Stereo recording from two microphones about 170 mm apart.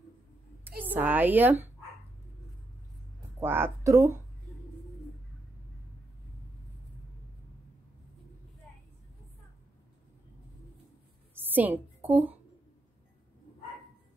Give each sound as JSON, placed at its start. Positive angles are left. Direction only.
{"t": 0.7, "sound": "a woman's voice", "side_deg": -10}
{"t": 3.3, "sound": "speech", "side_deg": -15}
{"t": 11.3, "sound": "a woman's voice", "side_deg": -10}